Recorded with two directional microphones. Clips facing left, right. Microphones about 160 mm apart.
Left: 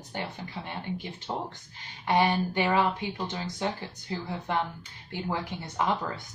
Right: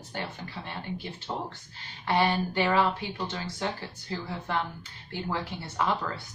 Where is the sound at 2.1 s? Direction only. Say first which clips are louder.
Left 1 dB; 15° left (ahead or behind).